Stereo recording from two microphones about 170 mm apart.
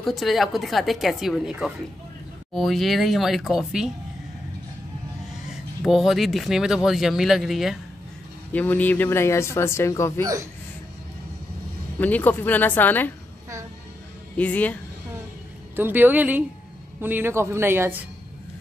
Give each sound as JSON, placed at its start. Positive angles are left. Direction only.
{"t": 0.0, "sound": "speech", "side_deg": 0}
{"t": 5.5, "sound": "speech", "side_deg": 0}
{"t": 8.5, "sound": "speech", "side_deg": 10}
{"t": 10.2, "sound": "speech", "side_deg": -20}
{"t": 12.0, "sound": "speech", "side_deg": 10}
{"t": 14.3, "sound": "speech", "side_deg": 10}
{"t": 15.7, "sound": "a man's voice", "side_deg": -10}